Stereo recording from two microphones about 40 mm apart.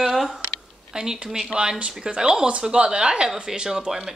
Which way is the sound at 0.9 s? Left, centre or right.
Centre.